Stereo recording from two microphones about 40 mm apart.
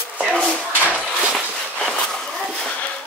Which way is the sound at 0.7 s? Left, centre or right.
Right.